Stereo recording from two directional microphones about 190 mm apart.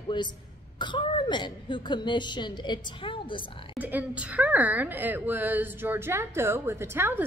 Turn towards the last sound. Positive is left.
turn(degrees=-10)  # may be behind; listen again after turning